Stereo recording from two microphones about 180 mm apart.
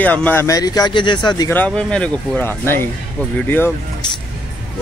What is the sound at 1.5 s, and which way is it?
Speech, 5° left (ahead or behind).